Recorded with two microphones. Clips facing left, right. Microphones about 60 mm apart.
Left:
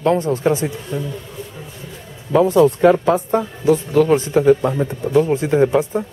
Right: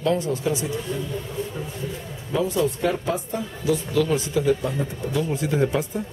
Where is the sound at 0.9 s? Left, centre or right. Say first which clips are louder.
Left 4 dB; left.